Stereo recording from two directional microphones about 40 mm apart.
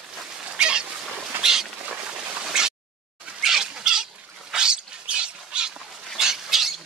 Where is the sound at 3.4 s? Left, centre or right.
Centre.